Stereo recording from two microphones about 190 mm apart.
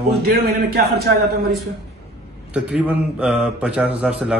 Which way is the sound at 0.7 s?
55° right (ahead or behind).